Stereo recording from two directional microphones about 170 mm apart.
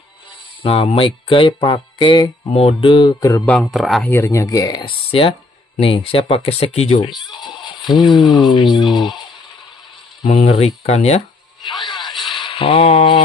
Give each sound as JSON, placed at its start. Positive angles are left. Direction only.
{"t": 0.6, "sound": "speech", "side_deg": 35}
{"t": 3.4, "sound": "speech", "side_deg": 5}
{"t": 4.1, "sound": "speech", "side_deg": 15}
{"t": 8.5, "sound": "speech", "side_deg": 25}
{"t": 10.2, "sound": "speech", "side_deg": 40}
{"t": 11.8, "sound": "a sound", "side_deg": 0}
{"t": 12.4, "sound": "mantra", "side_deg": 30}